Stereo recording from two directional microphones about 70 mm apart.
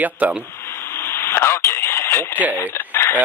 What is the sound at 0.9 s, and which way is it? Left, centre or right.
Radio, left.